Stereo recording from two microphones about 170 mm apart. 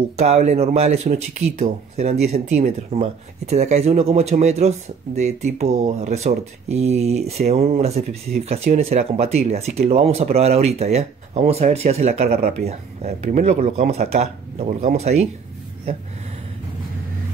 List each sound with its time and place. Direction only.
0.2 s speech: 40° right (ahead or behind)